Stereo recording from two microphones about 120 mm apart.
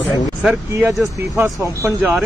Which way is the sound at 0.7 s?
20° right (ahead or behind).